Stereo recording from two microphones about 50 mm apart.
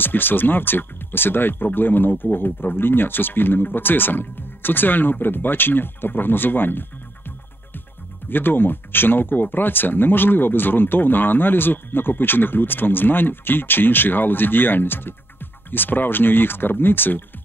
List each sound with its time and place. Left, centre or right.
0.0 s speech: left